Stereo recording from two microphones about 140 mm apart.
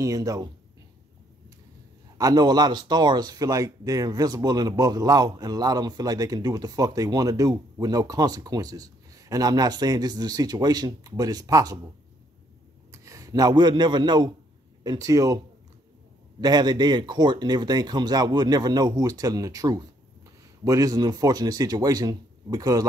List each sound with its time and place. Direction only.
0.0 s speech: 25° right (ahead or behind)
2.1 s speech: 30° right (ahead or behind)
12.9 s speech: 20° right (ahead or behind)